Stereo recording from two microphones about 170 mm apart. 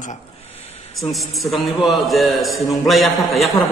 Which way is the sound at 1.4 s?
Centre (ahead or behind).